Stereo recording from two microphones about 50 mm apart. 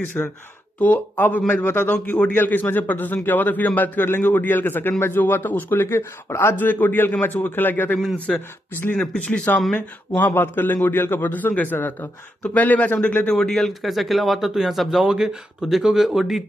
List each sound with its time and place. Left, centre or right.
0.2 s a man's voice: left
0.7 s a man's voice: left
2.0 s speech: left
2.3 s a man's voice: left
5.9 s speech: left
6.5 s a man's voice: left
8.3 s speech: centre
9.1 s speech: left
10.1 s a man's voice: left
12.5 s a man's voice: left
13.3 s speech: centre